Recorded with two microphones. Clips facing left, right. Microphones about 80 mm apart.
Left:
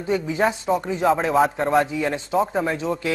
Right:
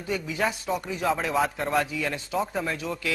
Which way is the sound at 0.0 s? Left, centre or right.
Left.